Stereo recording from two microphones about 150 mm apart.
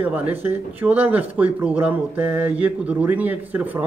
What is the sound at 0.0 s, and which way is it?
Speech, 10° right (ahead or behind).